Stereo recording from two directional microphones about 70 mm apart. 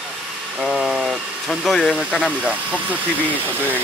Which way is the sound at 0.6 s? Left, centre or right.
Centre.